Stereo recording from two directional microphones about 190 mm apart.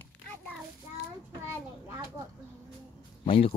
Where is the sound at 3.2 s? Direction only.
30° left (ahead or behind).